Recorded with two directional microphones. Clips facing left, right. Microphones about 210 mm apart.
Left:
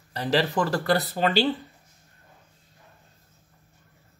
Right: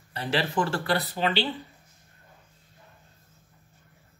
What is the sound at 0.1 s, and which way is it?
Speech, 35° left (ahead or behind).